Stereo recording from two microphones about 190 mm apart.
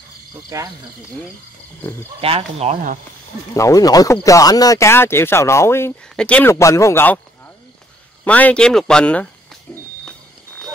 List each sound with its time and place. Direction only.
2.2 s speech: 30° right (ahead or behind)
3.5 s speech: 20° left (ahead or behind)
8.2 s speech: 10° left (ahead or behind)